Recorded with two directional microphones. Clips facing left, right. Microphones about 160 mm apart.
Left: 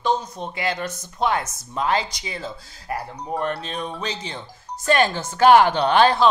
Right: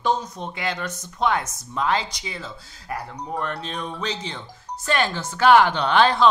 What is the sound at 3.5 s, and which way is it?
Speech, 10° left (ahead or behind).